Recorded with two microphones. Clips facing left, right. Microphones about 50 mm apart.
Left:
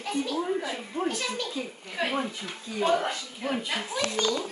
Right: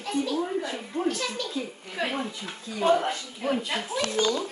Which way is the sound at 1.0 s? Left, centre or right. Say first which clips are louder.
Right 2 dB; centre.